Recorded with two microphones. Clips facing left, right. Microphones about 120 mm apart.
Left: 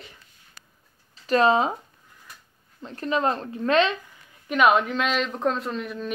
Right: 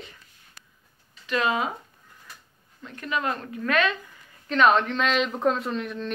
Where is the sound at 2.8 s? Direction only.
30° left (ahead or behind).